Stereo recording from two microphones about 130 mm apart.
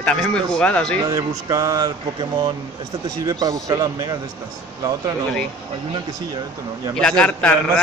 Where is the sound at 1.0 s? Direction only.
25° right (ahead or behind).